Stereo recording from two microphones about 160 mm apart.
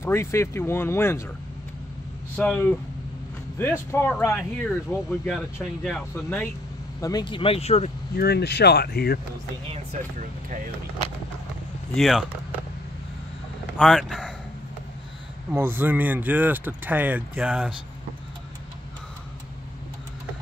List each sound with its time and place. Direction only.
0.0 s speech: 15° left (ahead or behind)
2.3 s speech: 10° left (ahead or behind)
7.0 s speech: 25° left (ahead or behind); by 7.9 s 40° left (ahead or behind)
8.2 s speech: 85° left
11.9 s speech: centre (ahead or behind)
13.7 s speech: centre (ahead or behind)
15.5 s speech: 15° right (ahead or behind)